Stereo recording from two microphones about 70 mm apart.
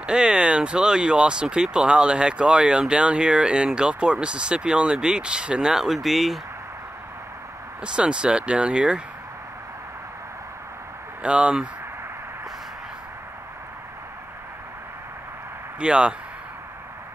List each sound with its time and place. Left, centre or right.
0.0 s speech: centre
7.8 s speech: centre
11.2 s speech: centre
15.8 s speech: centre